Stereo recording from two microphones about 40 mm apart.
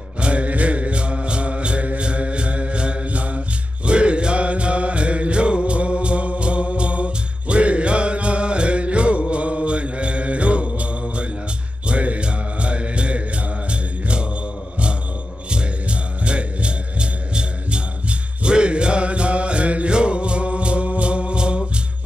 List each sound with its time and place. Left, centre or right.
0.2 s mantra: right
15.5 s music: right